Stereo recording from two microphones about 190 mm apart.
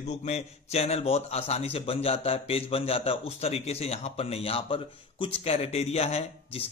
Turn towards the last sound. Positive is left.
turn(degrees=30)  # may be behind; listen again after turning